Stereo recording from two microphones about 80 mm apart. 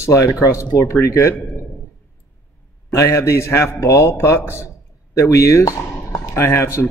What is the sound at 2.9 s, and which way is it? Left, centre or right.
Speech, left.